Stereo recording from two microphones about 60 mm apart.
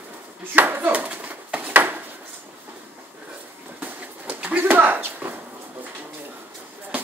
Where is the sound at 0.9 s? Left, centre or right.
Right.